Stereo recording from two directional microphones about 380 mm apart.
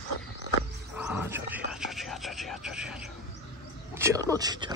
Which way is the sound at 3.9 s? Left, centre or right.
Centre.